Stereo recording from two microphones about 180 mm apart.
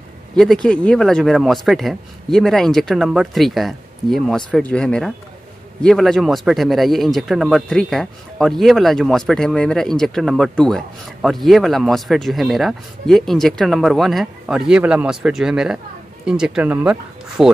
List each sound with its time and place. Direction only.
0.4 s speech: 5° left (ahead or behind)